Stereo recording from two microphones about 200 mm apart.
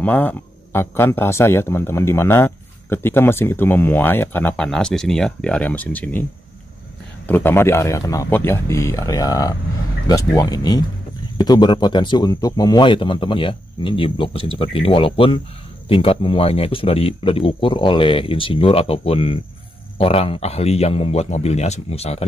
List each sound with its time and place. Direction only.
0.0 s speech: 10° left (ahead or behind)
7.2 s a man's voice: 10° left (ahead or behind); by 22.2 s 30° left (ahead or behind)